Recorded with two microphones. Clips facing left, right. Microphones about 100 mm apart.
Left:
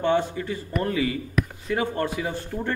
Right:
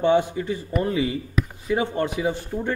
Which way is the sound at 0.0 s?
15° right (ahead or behind).